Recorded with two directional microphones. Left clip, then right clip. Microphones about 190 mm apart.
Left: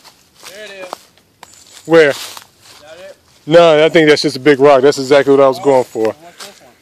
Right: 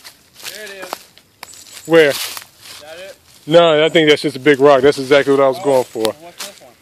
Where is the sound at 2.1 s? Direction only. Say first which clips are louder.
Right 3 dB; centre (ahead or behind).